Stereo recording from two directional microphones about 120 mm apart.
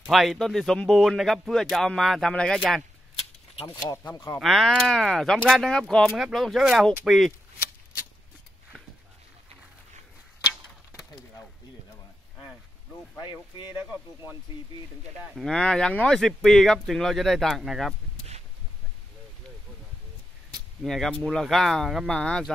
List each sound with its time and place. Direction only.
0.0 s speech: centre (ahead or behind)
3.6 s speech: 30° left (ahead or behind)
4.4 s speech: centre (ahead or behind)
13.2 s speech: 40° left (ahead or behind)
15.3 s speech: 5° left (ahead or behind)
20.8 s speech: centre (ahead or behind)